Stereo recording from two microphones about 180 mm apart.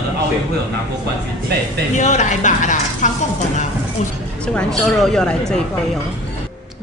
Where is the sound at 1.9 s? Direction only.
40° left (ahead or behind).